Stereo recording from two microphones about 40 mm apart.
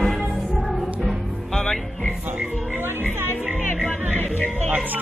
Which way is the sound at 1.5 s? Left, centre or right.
Centre.